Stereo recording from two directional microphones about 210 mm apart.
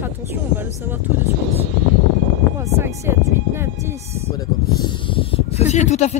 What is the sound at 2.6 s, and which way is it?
Speech, 15° right (ahead or behind).